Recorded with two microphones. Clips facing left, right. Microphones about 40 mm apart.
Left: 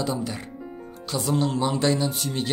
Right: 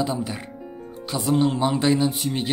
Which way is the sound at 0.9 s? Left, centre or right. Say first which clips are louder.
Right 3 dB; centre.